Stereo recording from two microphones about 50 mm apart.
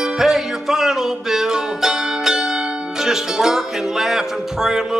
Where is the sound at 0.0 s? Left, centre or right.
Centre.